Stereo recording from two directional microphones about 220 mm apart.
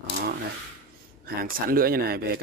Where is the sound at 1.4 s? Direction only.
40° right (ahead or behind).